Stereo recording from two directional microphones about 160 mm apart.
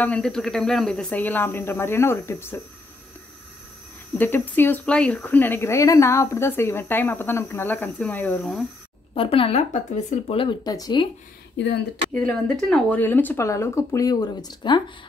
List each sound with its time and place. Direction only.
0.0 s speech: 5° left (ahead or behind)
4.2 s speech: 10° left (ahead or behind)
9.1 s speech: 35° left (ahead or behind)
11.5 s speech: 90° left
12.1 s speech: 5° left (ahead or behind); by 14.8 s 25° left (ahead or behind)